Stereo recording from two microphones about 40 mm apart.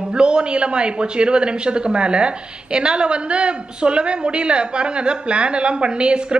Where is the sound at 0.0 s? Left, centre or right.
Right.